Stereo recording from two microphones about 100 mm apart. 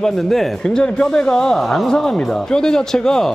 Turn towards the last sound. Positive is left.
turn(degrees=5)  # may be behind; listen again after turning